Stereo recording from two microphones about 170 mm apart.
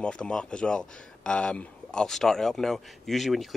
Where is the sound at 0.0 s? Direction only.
5° left (ahead or behind).